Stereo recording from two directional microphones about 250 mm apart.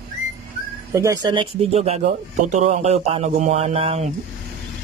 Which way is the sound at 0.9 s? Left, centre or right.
Centre.